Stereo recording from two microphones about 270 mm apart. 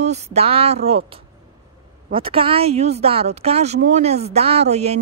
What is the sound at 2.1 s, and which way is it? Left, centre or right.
Speech, centre.